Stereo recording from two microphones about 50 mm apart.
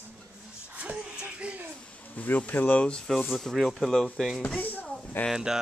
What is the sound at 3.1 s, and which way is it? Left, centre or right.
A man's voice, centre.